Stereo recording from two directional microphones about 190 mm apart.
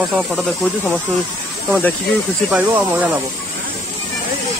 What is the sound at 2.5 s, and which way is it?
Speech, 10° right (ahead or behind).